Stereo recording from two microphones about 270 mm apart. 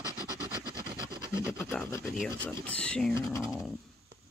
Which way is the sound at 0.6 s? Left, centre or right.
Centre.